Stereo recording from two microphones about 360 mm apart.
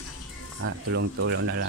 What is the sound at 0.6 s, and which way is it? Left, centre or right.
Speech, right.